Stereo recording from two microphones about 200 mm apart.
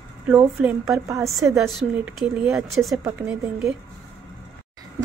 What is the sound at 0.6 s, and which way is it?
Speech, 15° right (ahead or behind).